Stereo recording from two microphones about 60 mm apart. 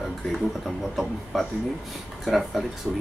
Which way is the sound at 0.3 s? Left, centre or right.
Centre.